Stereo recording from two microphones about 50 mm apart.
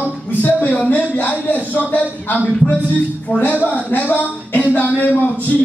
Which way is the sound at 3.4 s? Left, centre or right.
Left.